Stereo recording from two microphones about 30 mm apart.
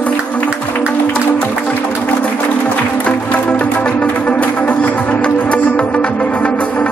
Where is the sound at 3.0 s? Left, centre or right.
Left.